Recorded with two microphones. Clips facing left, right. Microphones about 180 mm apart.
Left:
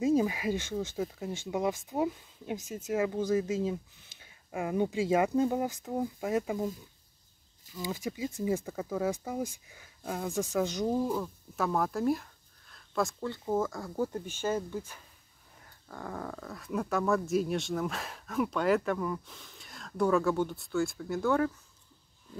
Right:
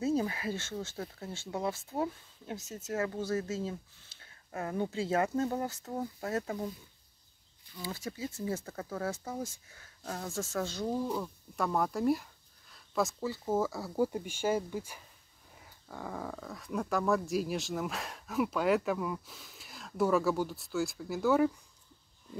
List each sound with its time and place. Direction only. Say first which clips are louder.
0.0 s speech: left 4 dB; 15° left (ahead or behind)
7.8 s speech: left 4 dB; 15° left (ahead or behind)
11.1 s speech: left 3 dB; centre (ahead or behind)